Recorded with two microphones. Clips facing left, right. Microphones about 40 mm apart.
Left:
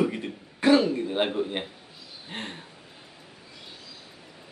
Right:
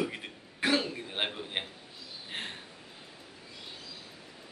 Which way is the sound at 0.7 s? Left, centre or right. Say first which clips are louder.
Left 9 dB; centre.